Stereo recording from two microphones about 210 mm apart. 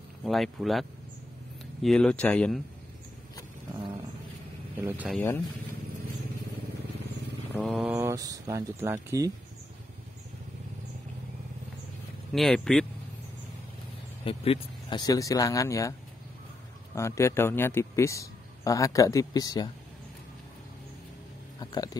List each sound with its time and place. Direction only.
0.2 s speech: centre (ahead or behind)
3.7 s a sound: 25° right (ahead or behind)
4.8 s speech: 5° right (ahead or behind)
7.5 s speech: centre (ahead or behind)
7.9 s speech: 15° right (ahead or behind)
12.3 s speech: centre (ahead or behind)
14.2 s a man's voice: 25° left (ahead or behind)
16.9 s a man's voice: 15° left (ahead or behind)
21.5 s speech: 20° left (ahead or behind)